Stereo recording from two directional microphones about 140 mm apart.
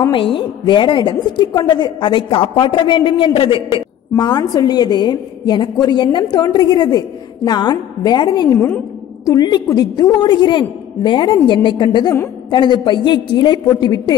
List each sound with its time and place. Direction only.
0.1 s a woman's voice: 35° left (ahead or behind)
4.1 s a woman's voice: 30° left (ahead or behind)
8.5 s a woman's voice: 15° left (ahead or behind)